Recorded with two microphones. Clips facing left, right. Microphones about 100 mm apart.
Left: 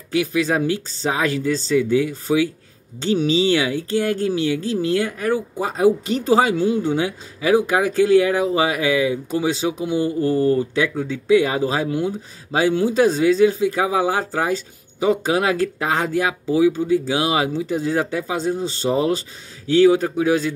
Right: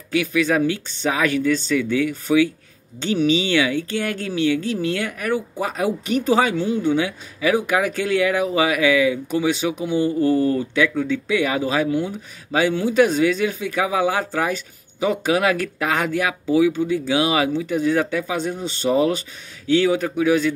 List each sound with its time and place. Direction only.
0.1 s speech: 35° left (ahead or behind)